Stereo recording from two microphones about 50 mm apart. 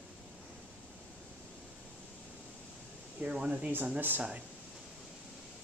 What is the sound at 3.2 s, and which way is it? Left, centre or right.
Speech, centre.